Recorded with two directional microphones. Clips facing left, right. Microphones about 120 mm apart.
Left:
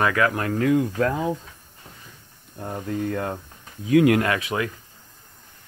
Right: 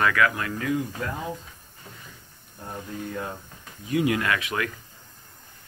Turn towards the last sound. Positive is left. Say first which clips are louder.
# left 3 dB
turn(degrees=35)  # may be behind; listen again after turning